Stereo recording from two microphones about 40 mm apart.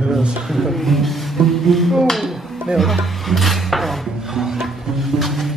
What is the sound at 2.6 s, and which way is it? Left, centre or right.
Dishes, centre.